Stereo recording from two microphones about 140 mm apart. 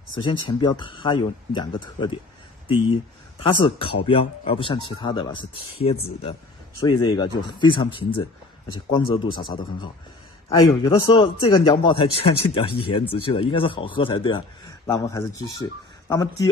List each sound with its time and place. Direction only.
0.1 s speech: 35° left (ahead or behind)
3.3 s speech: 40° left (ahead or behind)
15.0 s speech: 25° left (ahead or behind)